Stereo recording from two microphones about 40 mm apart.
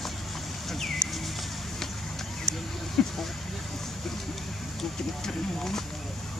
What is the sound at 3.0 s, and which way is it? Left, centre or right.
Speech, left.